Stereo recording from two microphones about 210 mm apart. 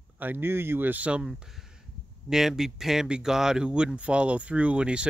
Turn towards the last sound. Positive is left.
turn(degrees=-5)  # may be behind; listen again after turning